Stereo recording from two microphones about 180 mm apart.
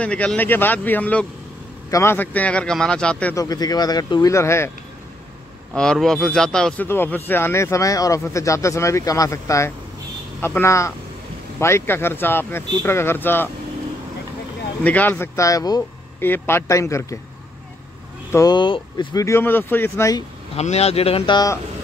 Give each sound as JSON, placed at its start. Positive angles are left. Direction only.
{"t": 0.0, "sound": "speech", "side_deg": 5}
{"t": 3.3, "sound": "speech", "side_deg": 20}
{"t": 5.8, "sound": "speech", "side_deg": 5}
{"t": 14.8, "sound": "speech", "side_deg": 10}
{"t": 18.3, "sound": "speech", "side_deg": 20}
{"t": 20.5, "sound": "speech", "side_deg": 35}